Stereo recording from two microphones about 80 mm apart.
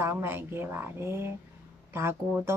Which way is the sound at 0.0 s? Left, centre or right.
Right.